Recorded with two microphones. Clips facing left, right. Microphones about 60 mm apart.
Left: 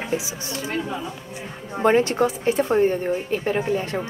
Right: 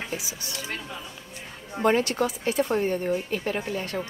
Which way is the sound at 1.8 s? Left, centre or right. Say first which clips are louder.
Left 5 dB; left.